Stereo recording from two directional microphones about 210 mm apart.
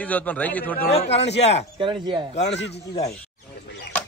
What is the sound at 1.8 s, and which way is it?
Speech, 20° right (ahead or behind).